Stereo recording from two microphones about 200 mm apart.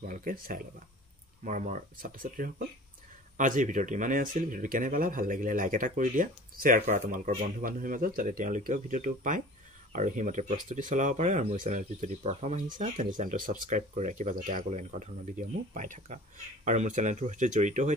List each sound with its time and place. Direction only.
0.1 s speech: 45° right (ahead or behind)